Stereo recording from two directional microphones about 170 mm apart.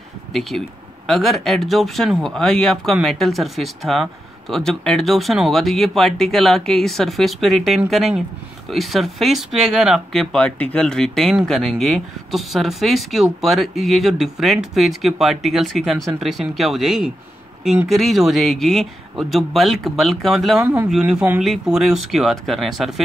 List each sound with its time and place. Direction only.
0.3 s speech: centre (ahead or behind)